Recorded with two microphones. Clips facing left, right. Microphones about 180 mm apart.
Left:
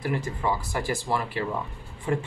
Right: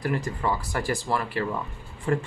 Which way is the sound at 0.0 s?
10° left (ahead or behind).